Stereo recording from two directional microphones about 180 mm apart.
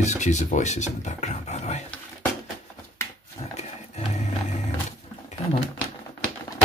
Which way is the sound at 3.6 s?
35° left (ahead or behind).